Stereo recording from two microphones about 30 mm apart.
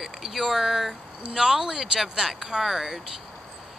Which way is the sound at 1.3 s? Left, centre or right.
Right.